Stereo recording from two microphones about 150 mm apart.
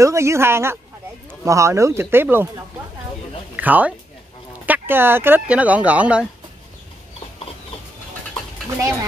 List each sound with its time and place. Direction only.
0.0 s speech: 20° right (ahead or behind)